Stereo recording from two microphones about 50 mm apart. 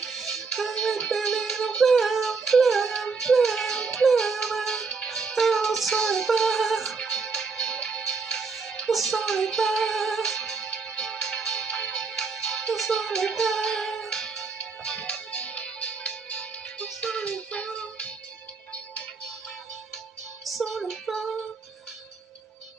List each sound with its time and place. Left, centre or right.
0.0 s music: centre
7.0 s music: centre
20.4 s music: centre
20.9 s female singing: centre